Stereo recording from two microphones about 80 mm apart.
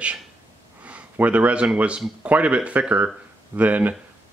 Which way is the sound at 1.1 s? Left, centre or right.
Centre.